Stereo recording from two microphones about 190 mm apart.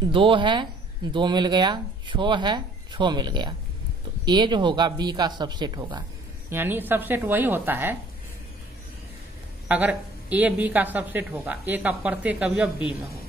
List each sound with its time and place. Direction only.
0.1 s speech: 25° right (ahead or behind)
6.5 s speech: 10° right (ahead or behind)
9.7 s speech: 10° right (ahead or behind)